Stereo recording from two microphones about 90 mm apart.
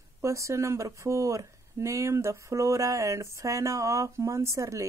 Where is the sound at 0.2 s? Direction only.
35° right (ahead or behind).